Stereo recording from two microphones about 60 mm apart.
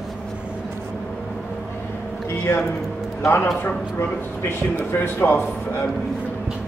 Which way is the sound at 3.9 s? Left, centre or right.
Left.